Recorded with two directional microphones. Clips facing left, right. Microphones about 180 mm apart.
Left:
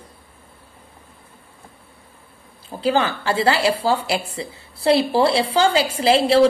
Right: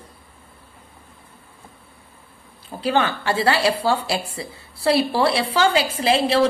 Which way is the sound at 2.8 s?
25° left (ahead or behind).